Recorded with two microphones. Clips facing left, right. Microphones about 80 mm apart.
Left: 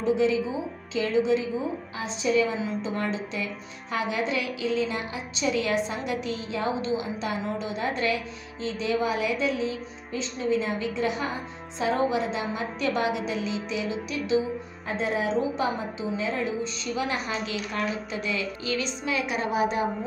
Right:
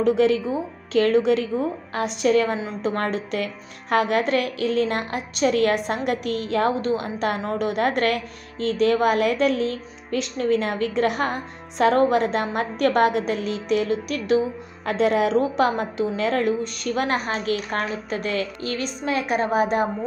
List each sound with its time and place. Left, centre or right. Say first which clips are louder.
0.0 s a woman's voice: right 5 dB; right
14.9 s a woman's voice: right 7 dB; right